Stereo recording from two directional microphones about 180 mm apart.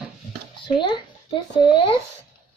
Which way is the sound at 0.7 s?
25° left (ahead or behind).